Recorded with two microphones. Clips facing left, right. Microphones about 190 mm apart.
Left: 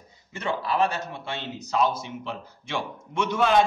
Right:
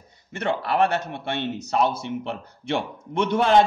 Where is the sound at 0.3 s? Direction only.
65° right (ahead or behind).